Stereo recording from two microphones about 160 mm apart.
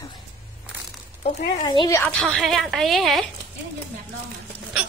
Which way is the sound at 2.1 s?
5° left (ahead or behind).